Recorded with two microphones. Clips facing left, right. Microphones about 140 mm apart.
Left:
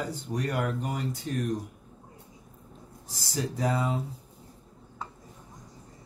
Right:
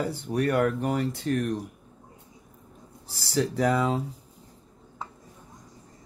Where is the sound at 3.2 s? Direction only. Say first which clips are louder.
Right 5 dB; 75° right (ahead or behind).